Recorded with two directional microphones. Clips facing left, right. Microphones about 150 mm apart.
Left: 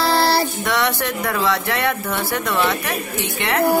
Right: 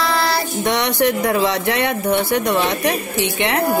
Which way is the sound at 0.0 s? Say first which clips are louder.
Left 2 dB; 35° left (ahead or behind).